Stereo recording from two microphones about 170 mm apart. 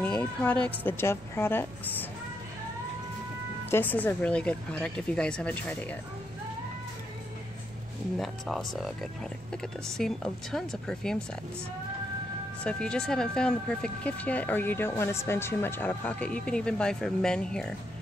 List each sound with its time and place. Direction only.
0.0 s speech: 10° left (ahead or behind)
3.7 s speech: 10° left (ahead or behind)
8.2 s speech: centre (ahead or behind)
12.6 s speech: 5° left (ahead or behind)